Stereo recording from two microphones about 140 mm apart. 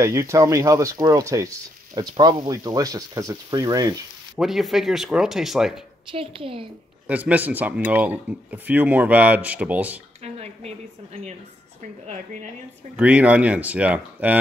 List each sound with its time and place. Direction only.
0.0 s speech: 20° right (ahead or behind)
4.4 s speech: centre (ahead or behind)
6.1 s a woman's voice: 40° right (ahead or behind)
7.1 s speech: 10° right (ahead or behind)
10.2 s a sound: 50° right (ahead or behind)
12.9 s speech: 10° right (ahead or behind)